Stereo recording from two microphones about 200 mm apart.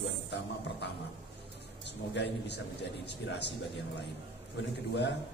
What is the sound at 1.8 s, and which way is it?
Speech, 60° left (ahead or behind).